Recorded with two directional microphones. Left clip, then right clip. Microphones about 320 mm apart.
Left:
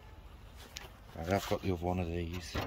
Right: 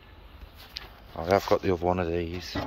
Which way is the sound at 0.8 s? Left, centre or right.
Centre.